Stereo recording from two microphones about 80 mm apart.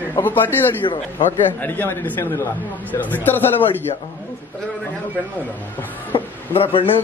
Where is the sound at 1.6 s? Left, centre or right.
Left.